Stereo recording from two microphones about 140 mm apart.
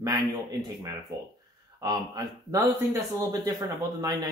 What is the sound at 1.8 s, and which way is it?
Speech, 25° right (ahead or behind).